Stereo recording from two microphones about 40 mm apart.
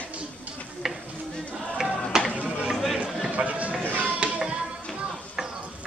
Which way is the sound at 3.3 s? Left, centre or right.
Right.